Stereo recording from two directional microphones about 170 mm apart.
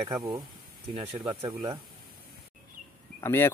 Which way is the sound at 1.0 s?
35° right (ahead or behind).